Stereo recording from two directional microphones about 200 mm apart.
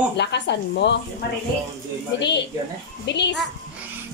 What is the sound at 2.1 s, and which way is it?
Speech, 60° left (ahead or behind).